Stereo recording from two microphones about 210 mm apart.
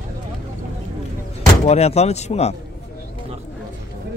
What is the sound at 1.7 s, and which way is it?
Speech, 30° left (ahead or behind).